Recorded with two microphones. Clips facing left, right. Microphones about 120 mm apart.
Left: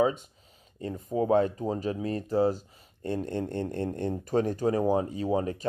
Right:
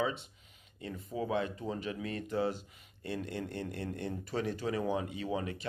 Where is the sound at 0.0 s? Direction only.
45° left (ahead or behind).